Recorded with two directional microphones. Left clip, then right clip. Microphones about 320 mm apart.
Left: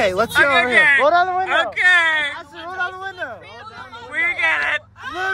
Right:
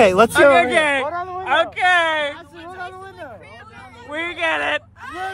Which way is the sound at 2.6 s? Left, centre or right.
Left.